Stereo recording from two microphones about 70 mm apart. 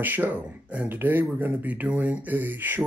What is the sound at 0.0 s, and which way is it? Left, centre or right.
Speech, right.